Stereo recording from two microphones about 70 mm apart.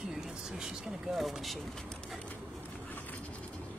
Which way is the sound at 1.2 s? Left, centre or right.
Centre.